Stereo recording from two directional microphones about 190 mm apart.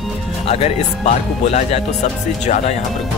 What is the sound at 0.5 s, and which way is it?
Speech, 35° left (ahead or behind).